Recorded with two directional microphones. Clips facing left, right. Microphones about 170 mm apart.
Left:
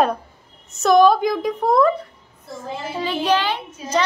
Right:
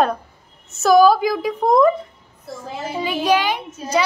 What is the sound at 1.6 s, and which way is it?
Speech, 15° right (ahead or behind).